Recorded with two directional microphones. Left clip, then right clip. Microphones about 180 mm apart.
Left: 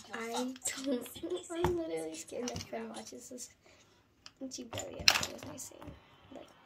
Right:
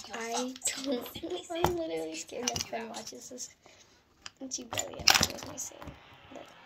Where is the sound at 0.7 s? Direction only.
30° left (ahead or behind).